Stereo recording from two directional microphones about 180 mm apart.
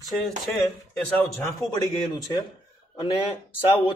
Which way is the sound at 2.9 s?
25° left (ahead or behind).